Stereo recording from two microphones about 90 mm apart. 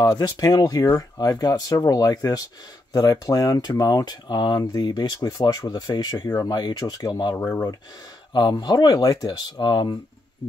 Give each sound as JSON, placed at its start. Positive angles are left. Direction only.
{"t": 0.0, "sound": "speech", "side_deg": 45}